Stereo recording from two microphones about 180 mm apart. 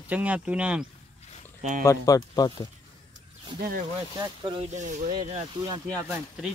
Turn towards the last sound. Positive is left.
turn(degrees=-5)  # may be behind; listen again after turning